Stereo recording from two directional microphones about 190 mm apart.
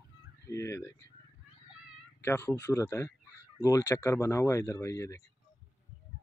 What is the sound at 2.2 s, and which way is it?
Speech, 10° left (ahead or behind).